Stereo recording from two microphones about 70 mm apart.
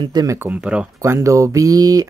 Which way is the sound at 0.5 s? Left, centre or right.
Centre.